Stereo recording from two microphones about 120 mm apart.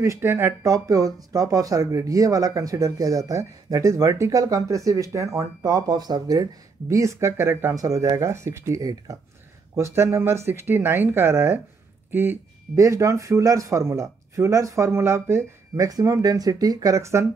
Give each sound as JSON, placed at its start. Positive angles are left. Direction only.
{"t": 0.0, "sound": "speech", "side_deg": -25}
{"t": 0.7, "sound": "speech", "side_deg": -30}